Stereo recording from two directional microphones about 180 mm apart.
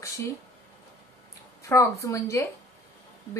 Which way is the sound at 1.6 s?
15° left (ahead or behind).